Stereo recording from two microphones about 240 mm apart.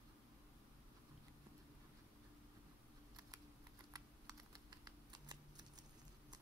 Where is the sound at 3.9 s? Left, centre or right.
Centre.